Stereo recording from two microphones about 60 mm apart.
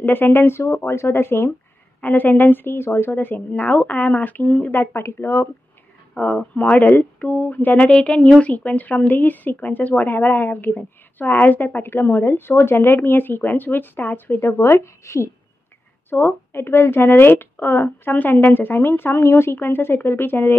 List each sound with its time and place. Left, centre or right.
0.0 s speech: left
2.0 s speech: left
4.6 s speech: left
6.1 s speech: left
7.8 s speech: centre; by 15.3 s left
16.1 s speech: left